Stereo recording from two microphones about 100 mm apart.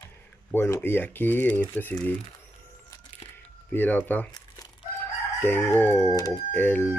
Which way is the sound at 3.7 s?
20° left (ahead or behind).